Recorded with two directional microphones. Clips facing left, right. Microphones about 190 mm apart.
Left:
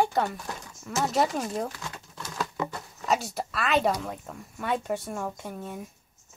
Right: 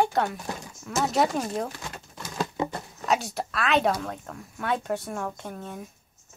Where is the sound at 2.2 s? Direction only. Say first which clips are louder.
Right 3 dB; 25° right (ahead or behind).